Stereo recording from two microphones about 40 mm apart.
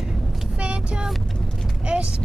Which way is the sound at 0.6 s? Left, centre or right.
Right.